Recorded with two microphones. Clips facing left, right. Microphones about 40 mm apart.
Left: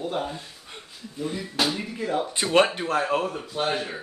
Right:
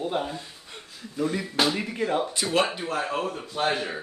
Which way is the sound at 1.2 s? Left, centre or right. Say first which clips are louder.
Right 4 dB; right.